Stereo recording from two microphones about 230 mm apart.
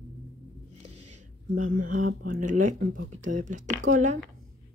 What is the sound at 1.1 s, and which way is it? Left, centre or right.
Speech, right.